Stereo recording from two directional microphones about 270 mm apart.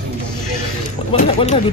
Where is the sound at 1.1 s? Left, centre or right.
Left.